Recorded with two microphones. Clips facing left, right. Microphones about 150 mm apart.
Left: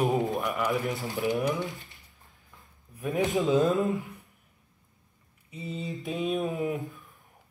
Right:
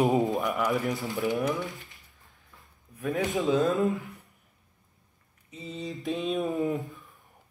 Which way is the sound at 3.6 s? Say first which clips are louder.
Even; 20° left (ahead or behind).